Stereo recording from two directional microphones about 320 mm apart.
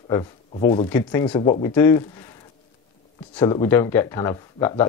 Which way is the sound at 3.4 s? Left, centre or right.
Centre.